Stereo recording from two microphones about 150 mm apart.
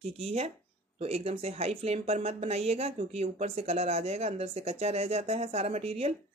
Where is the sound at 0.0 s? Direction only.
45° right (ahead or behind).